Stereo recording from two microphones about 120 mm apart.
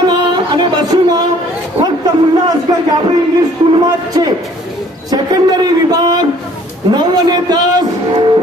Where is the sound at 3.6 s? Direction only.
45° right (ahead or behind).